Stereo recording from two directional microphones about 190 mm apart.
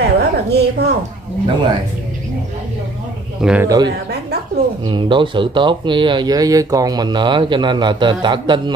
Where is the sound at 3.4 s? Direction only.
5° right (ahead or behind).